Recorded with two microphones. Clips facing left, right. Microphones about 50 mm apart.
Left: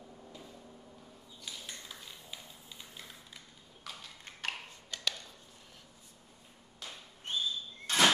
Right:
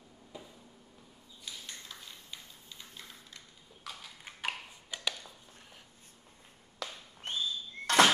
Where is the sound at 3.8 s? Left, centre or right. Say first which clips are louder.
Right 1 dB; centre.